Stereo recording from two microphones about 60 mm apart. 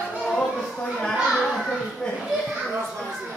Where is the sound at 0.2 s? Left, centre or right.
Centre.